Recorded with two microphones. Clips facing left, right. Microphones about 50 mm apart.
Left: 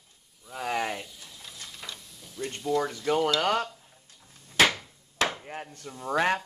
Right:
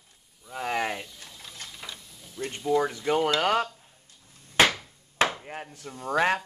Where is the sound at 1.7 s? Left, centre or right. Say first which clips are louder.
Even; centre.